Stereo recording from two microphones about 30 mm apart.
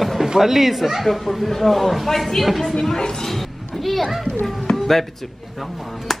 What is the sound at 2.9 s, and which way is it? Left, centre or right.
Speech, left.